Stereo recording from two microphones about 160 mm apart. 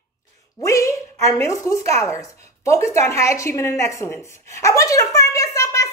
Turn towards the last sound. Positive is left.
turn(degrees=20)  # may be behind; listen again after turning